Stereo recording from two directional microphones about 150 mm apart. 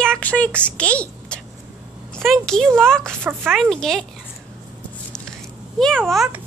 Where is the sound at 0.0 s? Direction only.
5° left (ahead or behind).